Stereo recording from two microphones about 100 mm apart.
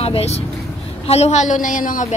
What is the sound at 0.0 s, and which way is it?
A woman's voice, 90° left.